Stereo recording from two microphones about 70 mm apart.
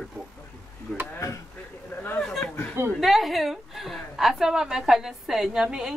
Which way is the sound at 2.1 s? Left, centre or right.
Centre.